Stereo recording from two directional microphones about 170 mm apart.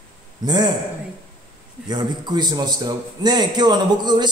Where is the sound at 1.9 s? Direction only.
25° right (ahead or behind).